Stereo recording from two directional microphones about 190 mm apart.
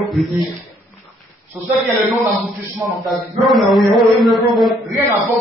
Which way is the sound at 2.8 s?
Centre (ahead or behind).